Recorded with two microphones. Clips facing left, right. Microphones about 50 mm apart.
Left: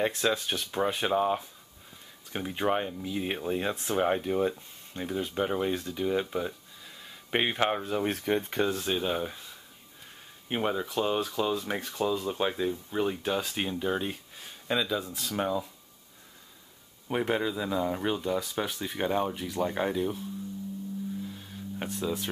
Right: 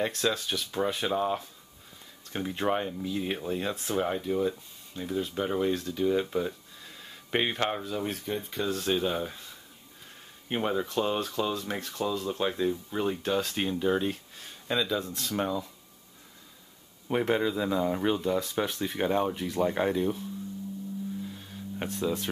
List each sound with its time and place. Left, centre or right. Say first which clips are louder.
0.0 s speech: left 1 dB; centre
5.3 s speech: even; centre
7.8 s speech: left 3 dB; left
8.1 s speech: left 5 dB; left
8.7 s speech: right 1 dB; centre
17.1 s speech: right 2 dB; centre
21.7 s speech: right 2 dB; centre